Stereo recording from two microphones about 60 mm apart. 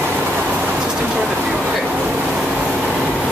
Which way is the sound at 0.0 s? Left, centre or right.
Right.